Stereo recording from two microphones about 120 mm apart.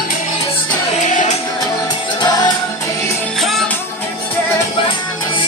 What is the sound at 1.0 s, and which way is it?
Music, 90° left.